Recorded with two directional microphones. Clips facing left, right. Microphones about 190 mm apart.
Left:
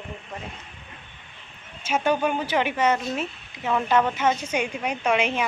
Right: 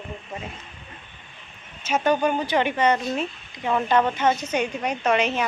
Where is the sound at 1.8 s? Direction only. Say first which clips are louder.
Right 2 dB; 10° left (ahead or behind).